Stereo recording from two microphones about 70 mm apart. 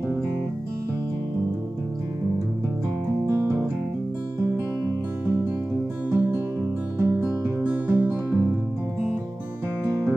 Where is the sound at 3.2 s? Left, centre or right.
Right.